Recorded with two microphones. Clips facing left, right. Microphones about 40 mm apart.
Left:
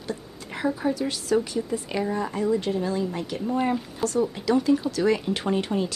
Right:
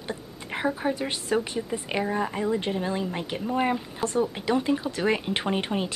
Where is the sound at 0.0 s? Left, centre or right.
Right.